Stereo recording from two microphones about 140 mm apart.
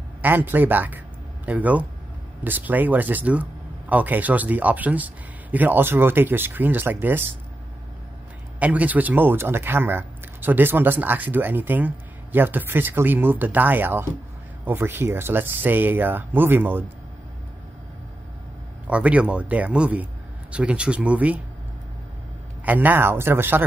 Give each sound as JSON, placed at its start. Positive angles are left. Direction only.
{"t": 0.2, "sound": "a man's voice", "side_deg": -15}
{"t": 8.5, "sound": "speech", "side_deg": -10}
{"t": 18.9, "sound": "speech", "side_deg": -10}
{"t": 22.7, "sound": "speech", "side_deg": -15}